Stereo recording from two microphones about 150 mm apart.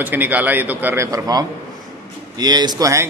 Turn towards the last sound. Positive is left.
turn(degrees=-20)  # may be behind; listen again after turning